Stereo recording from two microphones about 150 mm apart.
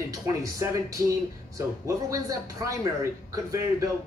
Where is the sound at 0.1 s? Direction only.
25° right (ahead or behind).